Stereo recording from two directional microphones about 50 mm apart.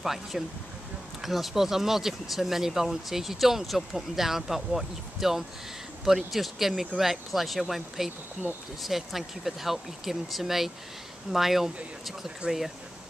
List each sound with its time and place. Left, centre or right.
0.0 s speech: centre
8.4 s speech: right
8.8 s speech: centre